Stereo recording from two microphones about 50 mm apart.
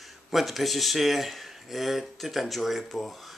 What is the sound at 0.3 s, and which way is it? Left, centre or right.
Speech, centre.